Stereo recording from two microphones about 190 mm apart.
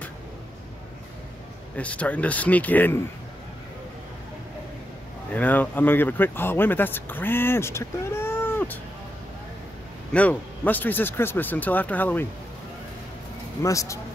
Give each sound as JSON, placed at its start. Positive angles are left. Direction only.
{"t": 1.8, "sound": "speech", "side_deg": 5}
{"t": 5.3, "sound": "speech", "side_deg": 10}
{"t": 10.1, "sound": "speech", "side_deg": 10}
{"t": 13.6, "sound": "speech", "side_deg": 15}